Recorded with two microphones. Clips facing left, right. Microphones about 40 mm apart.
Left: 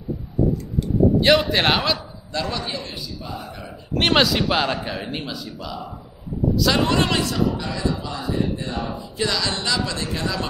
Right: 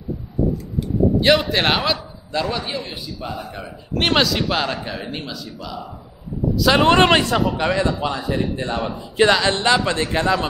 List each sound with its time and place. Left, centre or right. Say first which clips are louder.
0.7 s a sound: left 1 dB; centre
1.5 s a man's voice: right 1 dB; centre
2.3 s a man's voice: right 3 dB; centre
3.9 s a man's voice: even; centre
6.8 s a man's voice: right 6 dB; right